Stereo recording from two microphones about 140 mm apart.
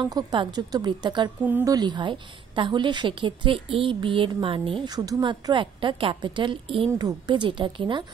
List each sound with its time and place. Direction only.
0.0 s a woman's voice: 30° right (ahead or behind)
1.4 s a woman's voice: 10° right (ahead or behind)
1.7 s a woman's voice: 30° right (ahead or behind)